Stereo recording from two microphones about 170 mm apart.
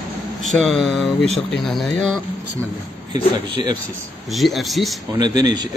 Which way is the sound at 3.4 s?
25° right (ahead or behind).